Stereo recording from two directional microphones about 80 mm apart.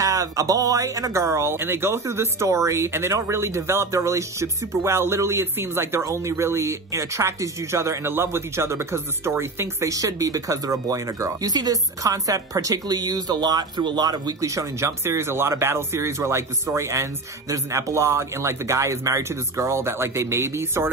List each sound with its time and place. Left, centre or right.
0.0 s speech: right
9.8 s speech: right
14.4 s speech: right